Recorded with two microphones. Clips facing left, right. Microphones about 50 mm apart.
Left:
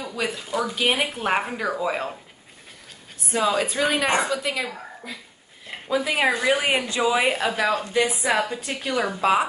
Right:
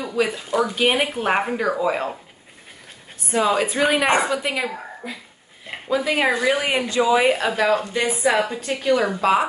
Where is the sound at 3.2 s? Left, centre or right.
Centre.